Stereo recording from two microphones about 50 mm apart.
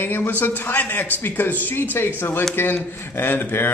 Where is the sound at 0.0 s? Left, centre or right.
Left.